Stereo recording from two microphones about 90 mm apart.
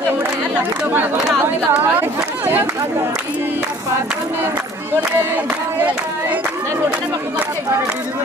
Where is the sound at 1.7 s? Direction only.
20° right (ahead or behind).